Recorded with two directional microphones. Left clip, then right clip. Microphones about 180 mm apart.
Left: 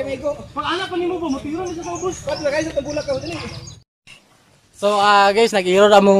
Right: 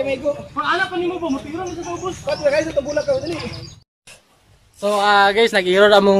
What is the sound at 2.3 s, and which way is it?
Speech, centre (ahead or behind).